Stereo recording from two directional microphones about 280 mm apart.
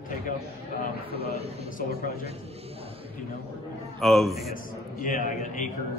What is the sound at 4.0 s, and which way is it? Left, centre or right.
Speech, centre.